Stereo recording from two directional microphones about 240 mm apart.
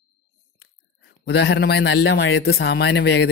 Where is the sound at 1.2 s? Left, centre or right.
Left.